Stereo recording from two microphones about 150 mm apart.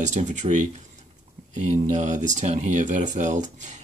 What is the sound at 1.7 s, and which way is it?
Speech, 50° right (ahead or behind).